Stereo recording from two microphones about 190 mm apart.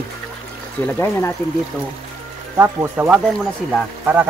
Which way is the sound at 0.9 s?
15° left (ahead or behind).